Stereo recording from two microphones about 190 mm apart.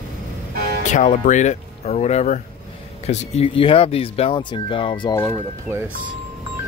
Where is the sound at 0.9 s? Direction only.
40° left (ahead or behind); by 5.2 s 25° left (ahead or behind).